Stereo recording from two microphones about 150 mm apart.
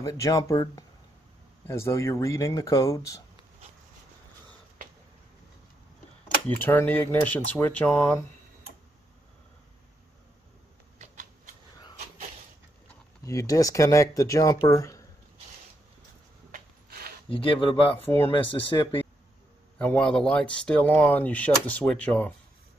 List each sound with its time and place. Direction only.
0.0 s speech: 20° left (ahead or behind)
6.6 s speech: 15° left (ahead or behind)
11.0 s a sound: 60° right (ahead or behind)
13.2 s speech: 20° left (ahead or behind)
17.3 s speech: 35° left (ahead or behind)
19.8 s speech: 10° left (ahead or behind)